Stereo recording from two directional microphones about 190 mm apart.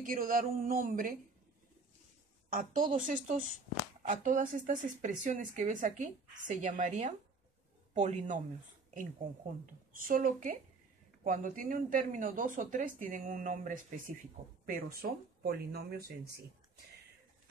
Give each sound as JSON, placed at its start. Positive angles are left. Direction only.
{"t": 0.0, "sound": "speech", "side_deg": -45}
{"t": 2.5, "sound": "speech", "side_deg": -45}
{"t": 9.9, "sound": "speech", "side_deg": -45}